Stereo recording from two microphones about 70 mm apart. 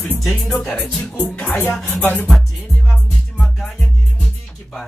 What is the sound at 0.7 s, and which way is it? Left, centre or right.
Speech, left.